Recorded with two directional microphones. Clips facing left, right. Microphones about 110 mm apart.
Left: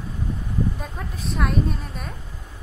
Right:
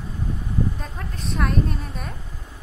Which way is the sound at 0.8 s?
Centre (ahead or behind).